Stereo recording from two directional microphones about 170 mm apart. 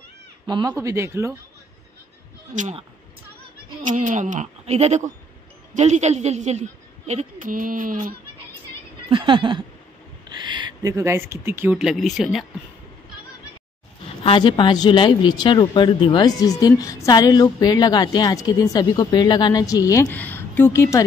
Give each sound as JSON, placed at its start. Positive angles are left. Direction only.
{"t": 0.5, "sound": "speech", "side_deg": -25}
{"t": 2.5, "sound": "a woman's voice", "side_deg": -45}
{"t": 3.8, "sound": "a woman's voice", "side_deg": -45}
{"t": 9.1, "sound": "a sound", "side_deg": -30}
{"t": 10.3, "sound": "speech", "side_deg": -25}
{"t": 14.2, "sound": "speech", "side_deg": 30}